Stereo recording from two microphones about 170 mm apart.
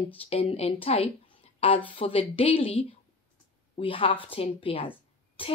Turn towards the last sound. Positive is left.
turn(degrees=30)  # may be behind; listen again after turning